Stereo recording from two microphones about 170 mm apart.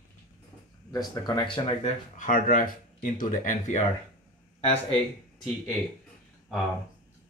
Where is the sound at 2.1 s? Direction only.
50° left (ahead or behind).